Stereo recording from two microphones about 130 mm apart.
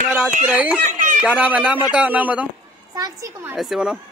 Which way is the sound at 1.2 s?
10° right (ahead or behind).